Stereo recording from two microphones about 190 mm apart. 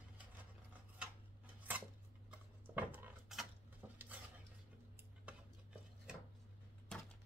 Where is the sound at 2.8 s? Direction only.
10° right (ahead or behind).